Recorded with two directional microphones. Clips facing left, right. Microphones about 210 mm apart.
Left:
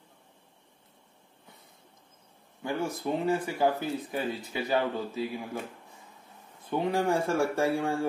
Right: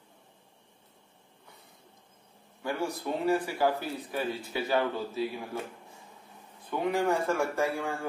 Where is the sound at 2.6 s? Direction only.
20° left (ahead or behind).